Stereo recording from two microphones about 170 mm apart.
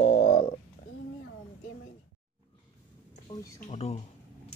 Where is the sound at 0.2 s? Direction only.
40° left (ahead or behind).